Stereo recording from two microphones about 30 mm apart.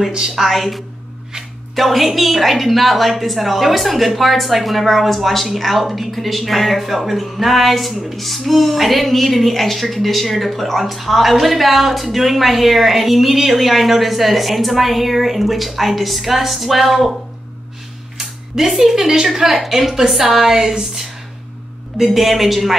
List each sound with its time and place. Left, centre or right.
0.4 s a woman's voice: centre
18.7 s a woman's voice: centre
20.5 s a sound: centre
21.9 s a woman's voice: centre